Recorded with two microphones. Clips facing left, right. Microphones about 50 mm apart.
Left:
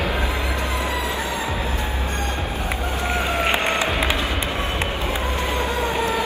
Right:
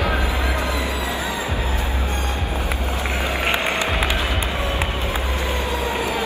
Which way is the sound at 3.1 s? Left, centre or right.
Left.